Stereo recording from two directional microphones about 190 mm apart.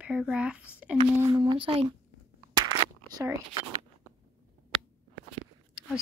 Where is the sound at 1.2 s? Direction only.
25° right (ahead or behind).